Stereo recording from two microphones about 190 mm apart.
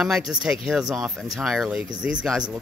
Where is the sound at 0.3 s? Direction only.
5° right (ahead or behind).